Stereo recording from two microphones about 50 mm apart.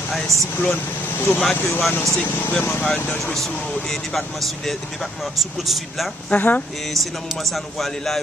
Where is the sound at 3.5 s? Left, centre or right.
Left.